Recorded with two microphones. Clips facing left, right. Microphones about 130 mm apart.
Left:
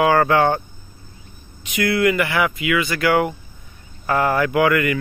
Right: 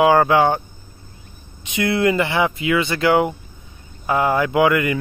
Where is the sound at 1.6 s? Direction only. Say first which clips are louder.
Even; 25° right (ahead or behind).